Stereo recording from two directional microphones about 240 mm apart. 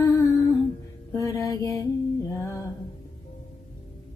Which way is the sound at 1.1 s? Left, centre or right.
Centre.